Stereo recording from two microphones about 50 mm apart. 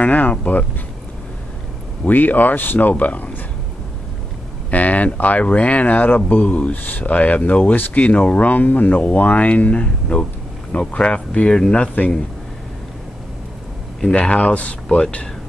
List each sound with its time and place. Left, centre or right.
0.0 s speech: left
2.0 s speech: left
4.6 s speech: left
14.0 s speech: left